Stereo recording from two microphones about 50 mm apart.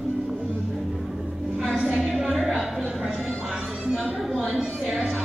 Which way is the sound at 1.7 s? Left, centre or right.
Centre.